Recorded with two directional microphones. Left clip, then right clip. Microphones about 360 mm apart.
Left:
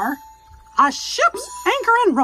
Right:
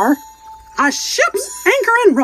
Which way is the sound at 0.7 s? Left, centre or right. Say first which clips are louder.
Right 1 dB; centre.